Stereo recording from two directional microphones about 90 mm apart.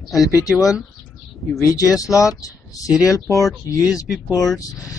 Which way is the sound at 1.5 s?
40° left (ahead or behind).